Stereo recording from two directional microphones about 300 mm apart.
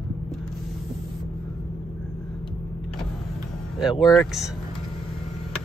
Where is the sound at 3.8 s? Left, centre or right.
Centre.